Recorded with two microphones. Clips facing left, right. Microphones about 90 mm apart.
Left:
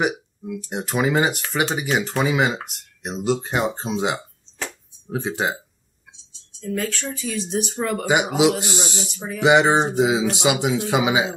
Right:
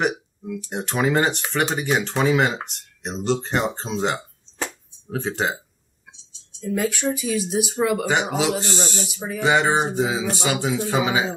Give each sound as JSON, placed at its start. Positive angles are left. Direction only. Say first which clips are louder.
{"t": 0.0, "sound": "a sound", "louder": "even", "side_deg": 5}
{"t": 0.7, "sound": "speech", "louder": "even", "side_deg": 5}
{"t": 6.7, "sound": "speech", "louder": "right 4 dB", "side_deg": -15}
{"t": 8.0, "sound": "speech", "louder": "left 3 dB", "side_deg": 10}
{"t": 9.1, "sound": "speech", "louder": "right 1 dB", "side_deg": -5}
{"t": 9.4, "sound": "speech", "louder": "left 3 dB", "side_deg": 15}